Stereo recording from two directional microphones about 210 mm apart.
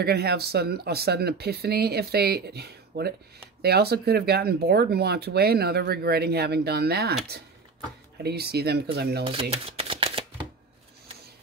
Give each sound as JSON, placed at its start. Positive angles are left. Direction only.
{"t": 0.0, "sound": "speech", "side_deg": -50}
{"t": 8.2, "sound": "speech", "side_deg": -50}
{"t": 9.2, "sound": "a sound", "side_deg": -25}